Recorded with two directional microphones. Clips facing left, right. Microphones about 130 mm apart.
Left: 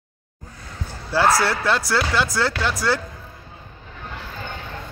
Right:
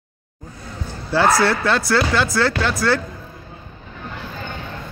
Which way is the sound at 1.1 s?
10° left (ahead or behind).